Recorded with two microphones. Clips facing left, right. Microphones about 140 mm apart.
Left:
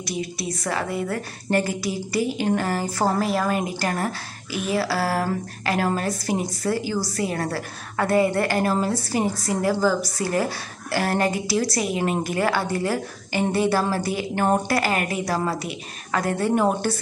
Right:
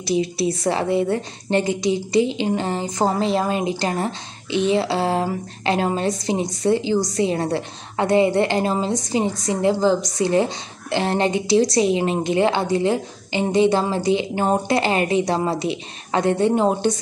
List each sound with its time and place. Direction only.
0.0 s a woman's voice: 30° right (ahead or behind)